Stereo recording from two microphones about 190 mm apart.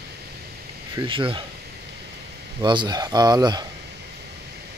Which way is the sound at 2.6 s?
25° right (ahead or behind).